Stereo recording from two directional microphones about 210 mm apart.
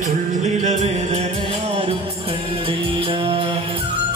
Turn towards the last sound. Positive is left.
turn(degrees=-25)  # may be behind; listen again after turning